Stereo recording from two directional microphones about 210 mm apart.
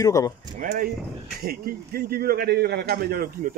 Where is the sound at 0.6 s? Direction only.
40° right (ahead or behind).